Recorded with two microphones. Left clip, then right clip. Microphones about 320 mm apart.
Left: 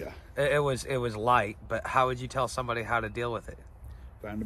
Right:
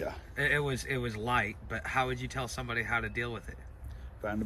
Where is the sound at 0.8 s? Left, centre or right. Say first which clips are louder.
Left 7 dB; centre.